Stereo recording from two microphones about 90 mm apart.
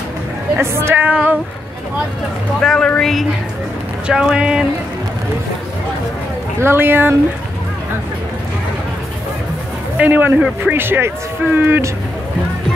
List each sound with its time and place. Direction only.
0.6 s speech: 30° right (ahead or behind)
2.6 s speech: 5° left (ahead or behind)
4.1 s speech: 10° right (ahead or behind)
6.6 s speech: 25° right (ahead or behind)
9.9 s speech: 20° right (ahead or behind)